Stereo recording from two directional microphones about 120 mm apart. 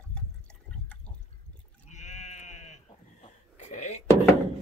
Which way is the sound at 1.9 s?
75° left (ahead or behind).